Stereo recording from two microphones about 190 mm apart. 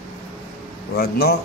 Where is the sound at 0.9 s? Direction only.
60° left (ahead or behind).